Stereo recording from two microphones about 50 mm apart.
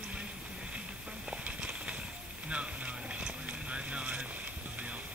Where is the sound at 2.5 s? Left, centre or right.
Right.